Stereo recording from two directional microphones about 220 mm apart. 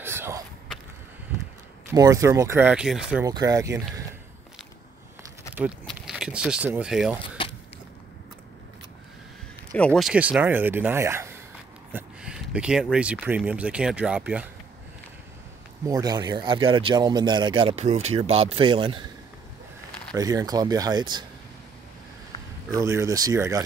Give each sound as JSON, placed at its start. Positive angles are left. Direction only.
{"t": 0.0, "sound": "a sound", "side_deg": -10}
{"t": 1.9, "sound": "speech", "side_deg": -15}
{"t": 3.3, "sound": "speech", "side_deg": -15}
{"t": 5.5, "sound": "speech", "side_deg": -5}
{"t": 9.7, "sound": "speech", "side_deg": 5}
{"t": 15.9, "sound": "speech", "side_deg": -15}
{"t": 20.2, "sound": "speech", "side_deg": -15}
{"t": 22.7, "sound": "speech", "side_deg": -15}